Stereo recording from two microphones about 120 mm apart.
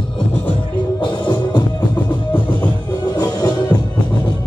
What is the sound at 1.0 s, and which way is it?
Music, 40° left (ahead or behind).